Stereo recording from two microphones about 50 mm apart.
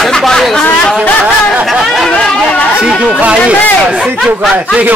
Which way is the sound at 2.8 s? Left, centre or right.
Centre.